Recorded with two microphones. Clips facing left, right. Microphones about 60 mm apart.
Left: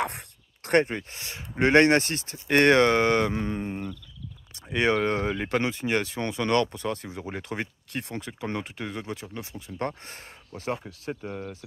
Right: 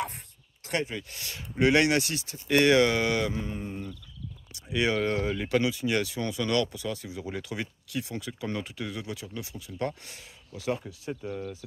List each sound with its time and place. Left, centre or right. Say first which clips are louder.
0.7 s speech: left 8 dB; left
1.1 s speech: right 1 dB; left
1.7 s speech: left 5 dB; left
3.3 s a sound: left 4 dB; left
4.6 s speech: left 3 dB; left